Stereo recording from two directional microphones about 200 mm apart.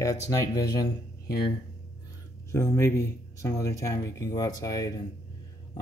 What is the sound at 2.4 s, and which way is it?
Speech, 15° left (ahead or behind).